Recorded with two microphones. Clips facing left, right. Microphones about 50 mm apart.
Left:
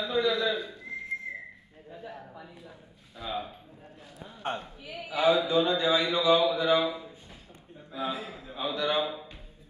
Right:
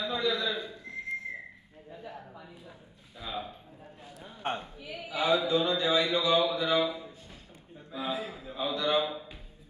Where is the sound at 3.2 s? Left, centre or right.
Centre.